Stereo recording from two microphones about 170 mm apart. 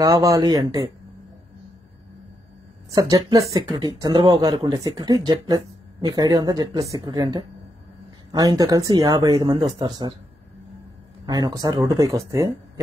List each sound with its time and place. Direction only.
0.0 s speech: 20° right (ahead or behind)
2.9 s speech: 20° right (ahead or behind)
11.2 s speech: 25° right (ahead or behind)